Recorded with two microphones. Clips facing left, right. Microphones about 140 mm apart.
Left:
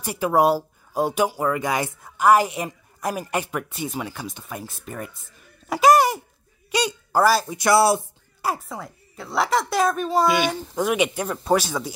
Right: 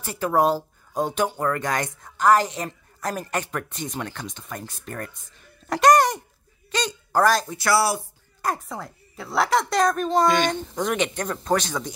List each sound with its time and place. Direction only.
0.0 s a woman's voice: 10° left (ahead or behind)
7.5 s speech: 20° left (ahead or behind)
8.4 s speech: 5° left (ahead or behind)